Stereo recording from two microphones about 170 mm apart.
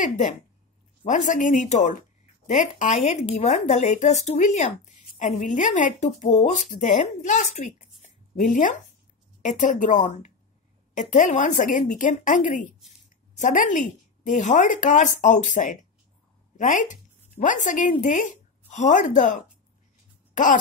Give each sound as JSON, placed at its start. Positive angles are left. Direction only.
{"t": 1.0, "sound": "a woman's voice", "side_deg": 45}